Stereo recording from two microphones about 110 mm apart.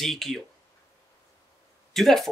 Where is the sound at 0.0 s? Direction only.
Centre (ahead or behind).